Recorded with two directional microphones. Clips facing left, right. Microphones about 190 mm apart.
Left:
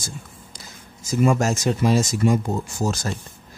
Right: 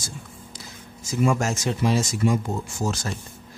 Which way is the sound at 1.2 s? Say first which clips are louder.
Left 3 dB; 40° left (ahead or behind).